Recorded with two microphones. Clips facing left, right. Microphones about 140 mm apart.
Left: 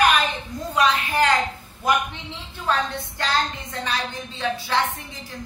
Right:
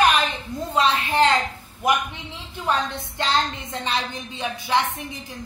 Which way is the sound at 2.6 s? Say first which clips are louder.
Even; 20° right (ahead or behind).